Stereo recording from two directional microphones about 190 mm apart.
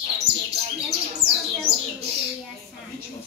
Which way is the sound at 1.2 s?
55° right (ahead or behind).